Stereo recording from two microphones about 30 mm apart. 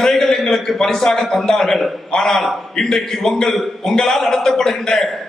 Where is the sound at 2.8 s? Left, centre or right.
Centre.